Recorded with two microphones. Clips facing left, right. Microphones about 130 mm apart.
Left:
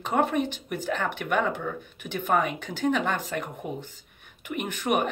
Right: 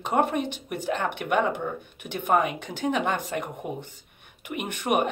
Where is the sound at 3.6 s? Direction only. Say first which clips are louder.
Right 1 dB; centre (ahead or behind).